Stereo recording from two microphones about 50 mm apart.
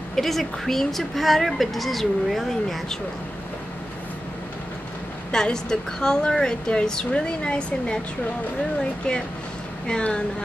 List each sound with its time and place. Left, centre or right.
0.1 s a woman's voice: centre
5.3 s a woman's voice: centre
9.8 s speech: centre